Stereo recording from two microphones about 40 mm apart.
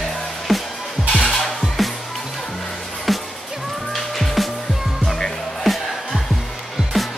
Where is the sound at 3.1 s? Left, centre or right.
Centre.